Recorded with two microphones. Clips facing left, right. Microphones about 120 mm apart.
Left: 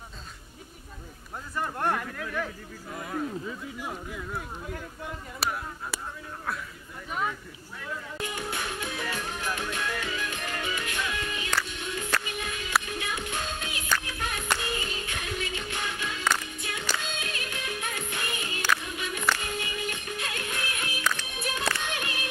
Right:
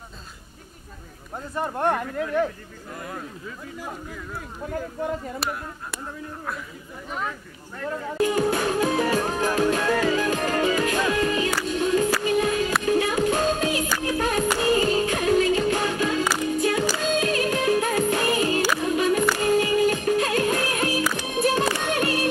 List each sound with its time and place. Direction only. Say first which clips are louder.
1.5 s speech: right 5 dB; 25° right (ahead or behind)
2.9 s speech: left 3 dB; centre (ahead or behind)
5.4 s speech: right 2 dB; centre (ahead or behind)
8.2 s music: right 14 dB; 40° right (ahead or behind)
21.0 s music: right 5 dB; 10° right (ahead or behind)
21.3 s music: right 10 dB; 40° right (ahead or behind)